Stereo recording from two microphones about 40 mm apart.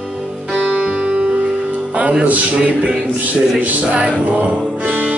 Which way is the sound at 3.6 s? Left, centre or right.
Right.